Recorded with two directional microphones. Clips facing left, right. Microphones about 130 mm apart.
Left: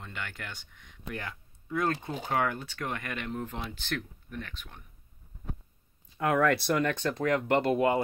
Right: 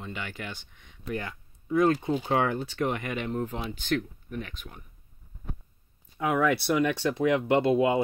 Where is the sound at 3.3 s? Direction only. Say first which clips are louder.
Right 5 dB; 5° right (ahead or behind).